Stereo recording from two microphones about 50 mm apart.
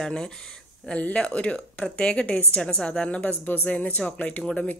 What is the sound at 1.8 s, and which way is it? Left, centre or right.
A woman's voice, centre.